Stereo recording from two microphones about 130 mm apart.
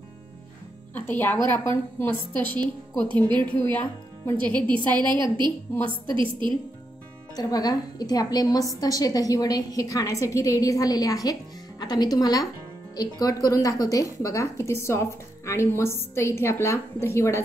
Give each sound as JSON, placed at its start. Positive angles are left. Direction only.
{"t": 0.9, "sound": "a woman's voice", "side_deg": 15}
{"t": 2.6, "sound": "a woman's voice", "side_deg": -35}
{"t": 3.7, "sound": "speech", "side_deg": 15}
{"t": 5.0, "sound": "a woman's voice", "side_deg": -35}
{"t": 7.3, "sound": "a woman's voice", "side_deg": 30}